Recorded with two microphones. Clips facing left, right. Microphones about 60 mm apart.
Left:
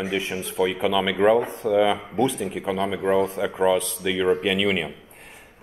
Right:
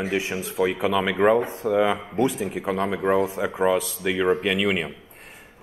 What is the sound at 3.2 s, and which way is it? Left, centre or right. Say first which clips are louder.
A man's voice: left 1 dB; centre.